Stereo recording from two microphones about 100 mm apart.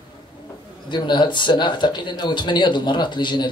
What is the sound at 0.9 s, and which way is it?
Speech, 50° left (ahead or behind).